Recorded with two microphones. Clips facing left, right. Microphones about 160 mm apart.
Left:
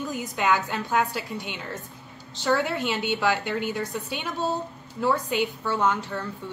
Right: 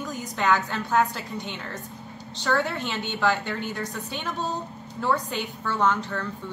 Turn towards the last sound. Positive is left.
turn(degrees=10)  # may be behind; listen again after turning